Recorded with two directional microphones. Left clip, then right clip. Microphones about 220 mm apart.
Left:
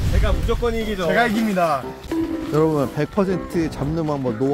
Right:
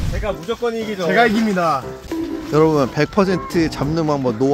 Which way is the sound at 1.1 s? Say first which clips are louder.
Right 4 dB; 50° right (ahead or behind).